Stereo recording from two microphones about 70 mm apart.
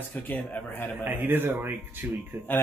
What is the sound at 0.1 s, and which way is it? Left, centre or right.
Speech, left.